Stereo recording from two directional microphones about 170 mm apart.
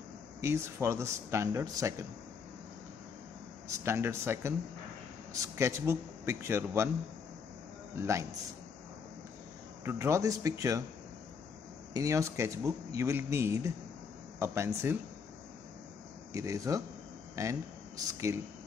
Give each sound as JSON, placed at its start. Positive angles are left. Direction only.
{"t": 0.4, "sound": "speech", "side_deg": -15}
{"t": 3.8, "sound": "speech", "side_deg": -15}
{"t": 8.0, "sound": "speech", "side_deg": -15}
{"t": 9.8, "sound": "speech", "side_deg": -15}
{"t": 11.9, "sound": "speech", "side_deg": -20}
{"t": 16.3, "sound": "speech", "side_deg": -20}